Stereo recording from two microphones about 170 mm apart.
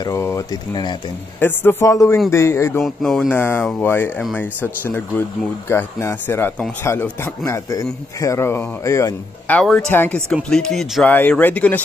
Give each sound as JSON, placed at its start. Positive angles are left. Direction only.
{"t": 0.0, "sound": "speech", "side_deg": 20}
{"t": 1.4, "sound": "a man's voice", "side_deg": 10}
{"t": 2.8, "sound": "a man's voice", "side_deg": 0}
{"t": 9.6, "sound": "a man's voice", "side_deg": 5}